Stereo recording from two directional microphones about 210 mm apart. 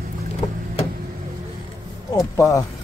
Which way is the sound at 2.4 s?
15° left (ahead or behind).